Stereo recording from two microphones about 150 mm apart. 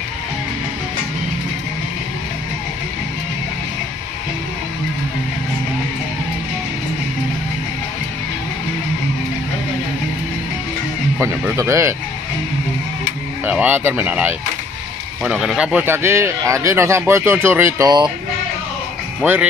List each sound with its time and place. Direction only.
11.1 s speech: 15° right (ahead or behind)
13.5 s speech: 10° right (ahead or behind); by 18.1 s 30° right (ahead or behind)
19.2 s speech: 10° right (ahead or behind)